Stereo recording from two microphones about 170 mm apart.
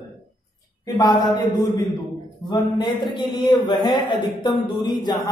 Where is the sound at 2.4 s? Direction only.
25° left (ahead or behind).